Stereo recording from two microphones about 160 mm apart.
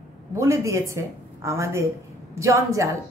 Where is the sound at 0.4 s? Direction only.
20° right (ahead or behind).